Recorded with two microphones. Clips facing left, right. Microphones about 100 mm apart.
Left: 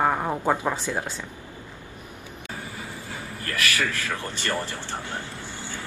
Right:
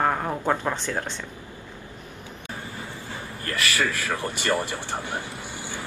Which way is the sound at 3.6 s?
20° right (ahead or behind).